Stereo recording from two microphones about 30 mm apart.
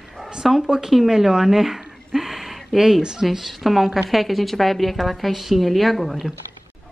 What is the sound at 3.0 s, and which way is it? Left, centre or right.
Speech, right.